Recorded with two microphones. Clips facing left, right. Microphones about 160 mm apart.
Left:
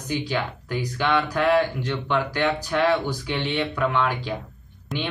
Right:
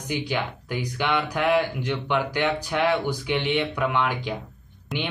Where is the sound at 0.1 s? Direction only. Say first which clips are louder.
Left 1 dB; 15° right (ahead or behind).